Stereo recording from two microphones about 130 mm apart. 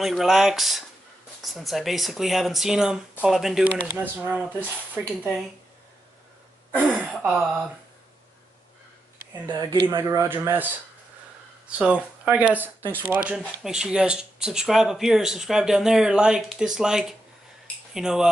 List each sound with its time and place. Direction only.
0.0 s speech: centre (ahead or behind)
6.9 s speech: 5° right (ahead or behind)
9.5 s speech: 35° right (ahead or behind)
10.0 s speech: 20° right (ahead or behind)
11.8 s speech: 10° right (ahead or behind)